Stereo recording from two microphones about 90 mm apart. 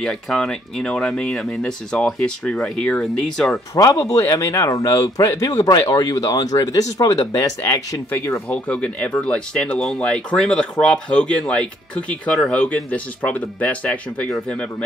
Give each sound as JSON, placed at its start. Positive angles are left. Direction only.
{"t": 0.0, "sound": "speech", "side_deg": 5}
{"t": 3.7, "sound": "speech", "side_deg": 40}
{"t": 8.5, "sound": "speech", "side_deg": 15}